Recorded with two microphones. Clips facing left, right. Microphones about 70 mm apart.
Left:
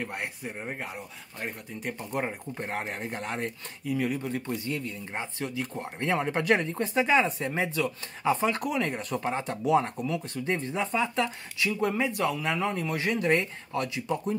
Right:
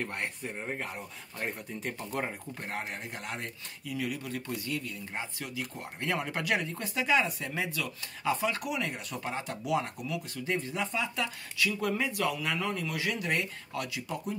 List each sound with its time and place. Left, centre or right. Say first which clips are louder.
0.0 s speech: left 1 dB; centre
2.0 s speech: left 5 dB; centre